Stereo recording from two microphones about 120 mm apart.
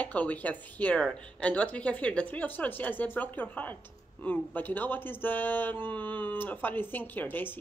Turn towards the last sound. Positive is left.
turn(degrees=15)  # may be behind; listen again after turning